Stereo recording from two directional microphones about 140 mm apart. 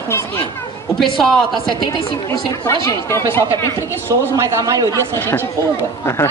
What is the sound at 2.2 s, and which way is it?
A woman's voice, 20° left (ahead or behind).